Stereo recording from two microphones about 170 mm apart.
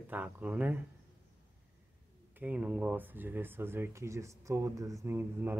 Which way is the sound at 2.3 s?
10° right (ahead or behind).